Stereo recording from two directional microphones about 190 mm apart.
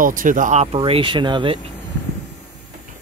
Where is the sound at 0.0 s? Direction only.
45° right (ahead or behind); by 1.6 s 25° right (ahead or behind).